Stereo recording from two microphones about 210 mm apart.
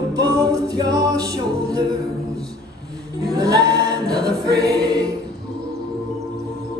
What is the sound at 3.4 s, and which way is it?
Choir, 20° right (ahead or behind).